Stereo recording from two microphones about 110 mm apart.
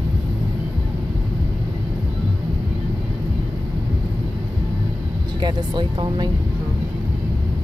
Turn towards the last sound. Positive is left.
turn(degrees=-45)  # may be behind; listen again after turning